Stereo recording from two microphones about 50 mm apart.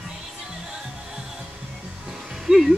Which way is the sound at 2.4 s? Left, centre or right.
Centre.